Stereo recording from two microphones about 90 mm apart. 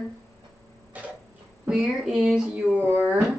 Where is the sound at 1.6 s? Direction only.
10° right (ahead or behind).